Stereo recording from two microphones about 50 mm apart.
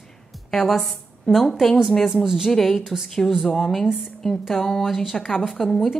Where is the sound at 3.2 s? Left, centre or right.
Centre.